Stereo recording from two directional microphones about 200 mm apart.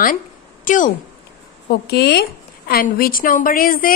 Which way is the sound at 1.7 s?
55° left (ahead or behind).